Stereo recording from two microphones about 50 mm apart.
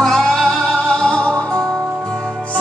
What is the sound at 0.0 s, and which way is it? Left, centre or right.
Music, centre.